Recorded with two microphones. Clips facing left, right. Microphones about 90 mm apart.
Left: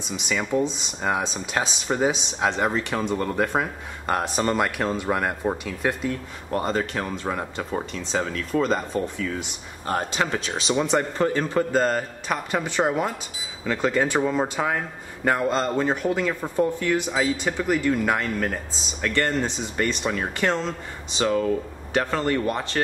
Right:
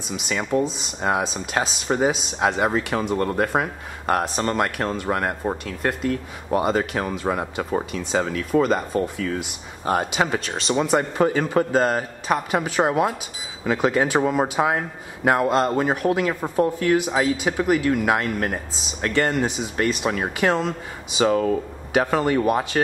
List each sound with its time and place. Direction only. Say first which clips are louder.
0.1 s speech: right 2 dB; centre (ahead or behind)
10.4 s speech: right 1 dB; centre (ahead or behind)
14.2 s speech: right 3 dB; 20° right (ahead or behind)